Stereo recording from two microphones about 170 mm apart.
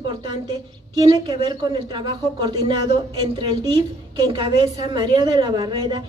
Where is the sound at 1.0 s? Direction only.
25° right (ahead or behind).